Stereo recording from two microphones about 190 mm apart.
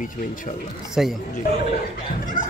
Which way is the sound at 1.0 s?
Centre (ahead or behind).